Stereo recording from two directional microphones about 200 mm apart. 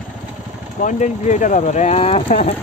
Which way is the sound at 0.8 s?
40° left (ahead or behind).